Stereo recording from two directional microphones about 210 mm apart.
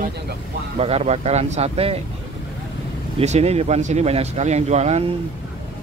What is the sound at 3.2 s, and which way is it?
Speech, 30° right (ahead or behind).